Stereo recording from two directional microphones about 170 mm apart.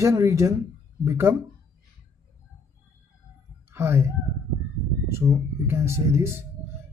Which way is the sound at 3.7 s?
15° right (ahead or behind).